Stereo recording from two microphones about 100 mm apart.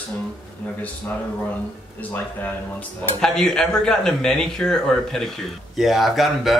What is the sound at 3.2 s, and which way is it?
Speech, 5° left (ahead or behind).